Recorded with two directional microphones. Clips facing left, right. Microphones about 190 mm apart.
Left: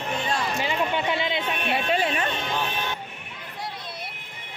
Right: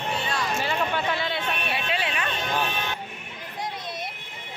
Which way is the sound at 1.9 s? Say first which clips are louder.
Left 6 dB; 40° left (ahead or behind).